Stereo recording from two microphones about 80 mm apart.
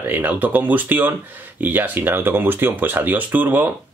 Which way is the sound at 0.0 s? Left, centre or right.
Right.